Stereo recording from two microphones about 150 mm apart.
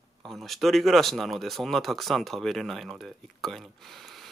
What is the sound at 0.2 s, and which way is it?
Speech, centre (ahead or behind).